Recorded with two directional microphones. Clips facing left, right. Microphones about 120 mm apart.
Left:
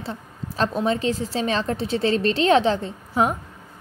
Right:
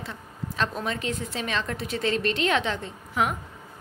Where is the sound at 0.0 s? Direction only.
30° left (ahead or behind).